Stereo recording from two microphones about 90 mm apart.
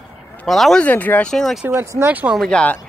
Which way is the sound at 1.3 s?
5° left (ahead or behind).